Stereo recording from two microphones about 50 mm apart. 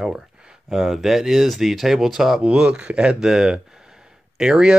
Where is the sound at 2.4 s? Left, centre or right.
Centre.